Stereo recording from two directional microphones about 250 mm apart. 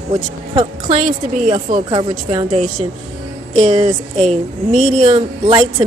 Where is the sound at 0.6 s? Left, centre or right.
Right.